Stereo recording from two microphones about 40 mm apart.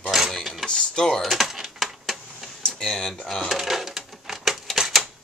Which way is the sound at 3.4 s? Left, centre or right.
Centre.